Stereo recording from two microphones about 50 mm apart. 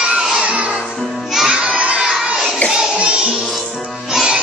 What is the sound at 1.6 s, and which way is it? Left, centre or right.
Children shouting, right.